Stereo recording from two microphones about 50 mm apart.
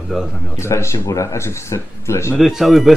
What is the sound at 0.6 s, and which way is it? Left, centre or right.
Speech, left.